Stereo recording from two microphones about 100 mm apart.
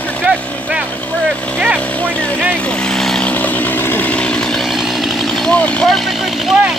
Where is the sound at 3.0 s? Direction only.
5° left (ahead or behind).